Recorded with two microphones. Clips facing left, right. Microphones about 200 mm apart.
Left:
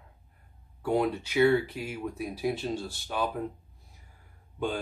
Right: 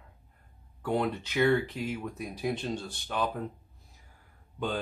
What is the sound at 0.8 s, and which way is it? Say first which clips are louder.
Speech: left 2 dB; 10° left (ahead or behind).